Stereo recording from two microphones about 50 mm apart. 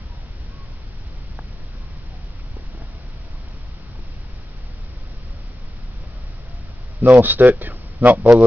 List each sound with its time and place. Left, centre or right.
7.0 s a man's voice: right